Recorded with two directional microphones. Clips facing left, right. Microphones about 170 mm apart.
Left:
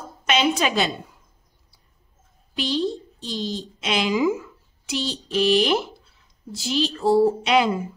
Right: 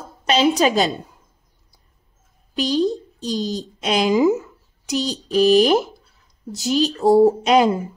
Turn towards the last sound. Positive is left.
turn(degrees=-40)  # may be behind; listen again after turning